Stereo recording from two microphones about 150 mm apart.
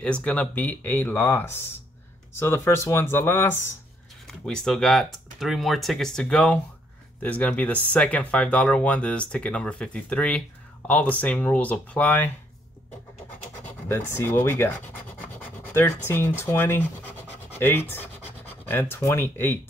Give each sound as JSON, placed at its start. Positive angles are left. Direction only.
{"t": 0.0, "sound": "speech", "side_deg": 5}
{"t": 4.3, "sound": "speech", "side_deg": 5}
{"t": 13.8, "sound": "speech", "side_deg": 15}